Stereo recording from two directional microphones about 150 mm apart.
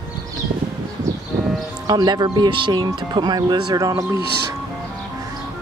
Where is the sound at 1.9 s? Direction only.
30° right (ahead or behind).